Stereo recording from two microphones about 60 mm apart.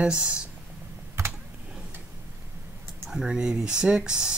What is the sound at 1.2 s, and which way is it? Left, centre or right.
Typing, right.